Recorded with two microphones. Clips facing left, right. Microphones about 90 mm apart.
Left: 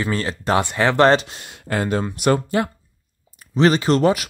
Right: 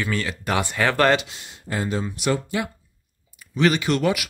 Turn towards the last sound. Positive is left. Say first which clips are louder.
# left 5 dB
turn(degrees=35)  # may be behind; listen again after turning